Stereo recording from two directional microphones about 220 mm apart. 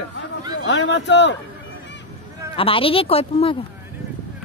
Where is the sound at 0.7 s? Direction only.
55° left (ahead or behind).